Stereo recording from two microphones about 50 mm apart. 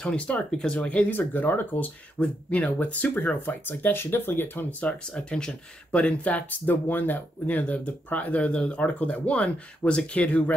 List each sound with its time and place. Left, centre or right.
0.5 s speech: centre
0.7 s speech: left
1.1 s speech: left
2.2 s speech: centre
2.5 s speech: left
4.6 s speech: left